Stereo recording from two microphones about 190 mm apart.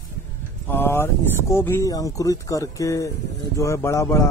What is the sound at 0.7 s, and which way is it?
Speech, 10° left (ahead or behind).